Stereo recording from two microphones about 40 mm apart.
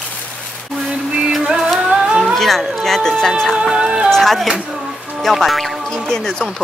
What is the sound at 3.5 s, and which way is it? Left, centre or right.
Music, right.